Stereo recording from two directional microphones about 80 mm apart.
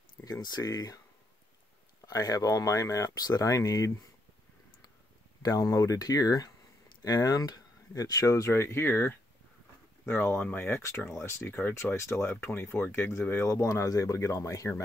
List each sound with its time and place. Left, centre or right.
0.2 s speech: left
2.0 s speech: left
5.4 s speech: left